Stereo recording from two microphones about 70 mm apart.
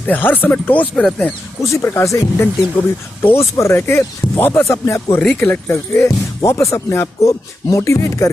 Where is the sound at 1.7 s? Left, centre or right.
Left.